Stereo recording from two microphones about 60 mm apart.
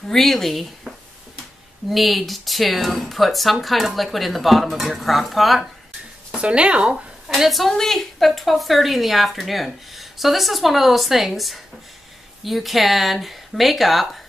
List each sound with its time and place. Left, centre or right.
0.1 s a woman's voice: centre
6.3 s speech: centre
7.2 s a woman's voice: centre